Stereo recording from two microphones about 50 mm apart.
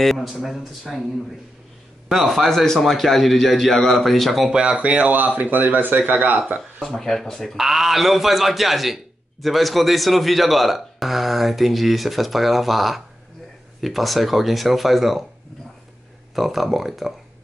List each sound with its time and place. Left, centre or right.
0.0 s a man's voice: centre
2.0 s a man's voice: centre
4.5 s speech: centre; by 6.4 s right
7.0 s a man's voice: centre
16.3 s a man's voice: centre